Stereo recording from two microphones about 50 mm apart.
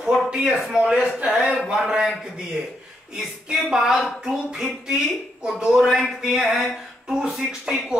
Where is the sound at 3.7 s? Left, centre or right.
Centre.